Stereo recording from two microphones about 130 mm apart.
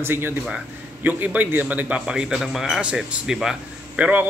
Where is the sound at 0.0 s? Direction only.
15° right (ahead or behind).